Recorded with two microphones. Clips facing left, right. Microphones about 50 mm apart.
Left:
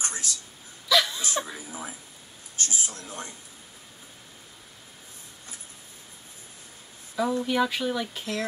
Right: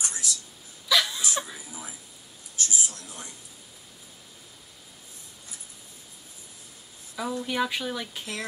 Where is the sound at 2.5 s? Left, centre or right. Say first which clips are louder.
Right 1 dB; left.